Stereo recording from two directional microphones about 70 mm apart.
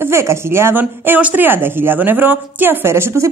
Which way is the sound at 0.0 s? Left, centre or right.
Right.